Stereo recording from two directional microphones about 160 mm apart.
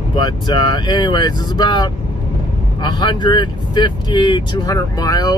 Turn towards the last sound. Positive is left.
turn(degrees=25)  # may be behind; listen again after turning